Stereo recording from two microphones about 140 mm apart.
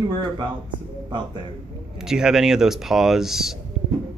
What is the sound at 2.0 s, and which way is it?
Speech, 5° right (ahead or behind).